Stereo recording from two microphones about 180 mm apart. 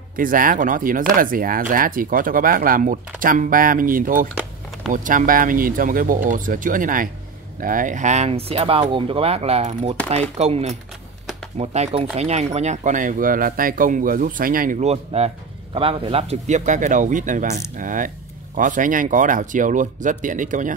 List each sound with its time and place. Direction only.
0.1 s speech: 50° right (ahead or behind)